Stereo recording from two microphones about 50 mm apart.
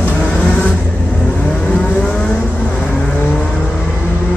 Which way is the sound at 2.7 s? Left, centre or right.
Left.